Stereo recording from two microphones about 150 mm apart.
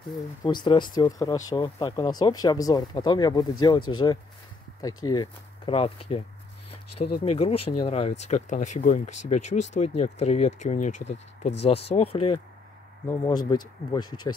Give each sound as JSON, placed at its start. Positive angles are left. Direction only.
{"t": 0.4, "sound": "speech", "side_deg": 30}
{"t": 5.7, "sound": "speech", "side_deg": 40}
{"t": 7.2, "sound": "speech", "side_deg": 40}
{"t": 13.2, "sound": "speech", "side_deg": 25}